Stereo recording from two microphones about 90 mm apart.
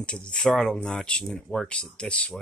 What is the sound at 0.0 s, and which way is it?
Speech, 10° left (ahead or behind).